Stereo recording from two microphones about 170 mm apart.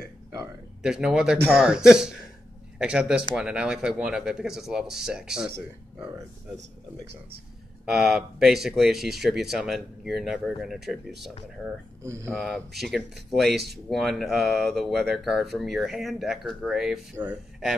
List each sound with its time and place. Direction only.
0.8 s speech: 5° right (ahead or behind)
5.9 s speech: 20° right (ahead or behind)
7.8 s speech: centre (ahead or behind)
12.0 s speech: 15° right (ahead or behind)
12.3 s speech: 5° left (ahead or behind)